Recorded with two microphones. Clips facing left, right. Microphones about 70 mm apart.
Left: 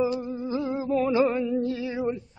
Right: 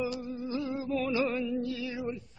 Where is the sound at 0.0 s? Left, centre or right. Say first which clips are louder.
Left 7 dB; left.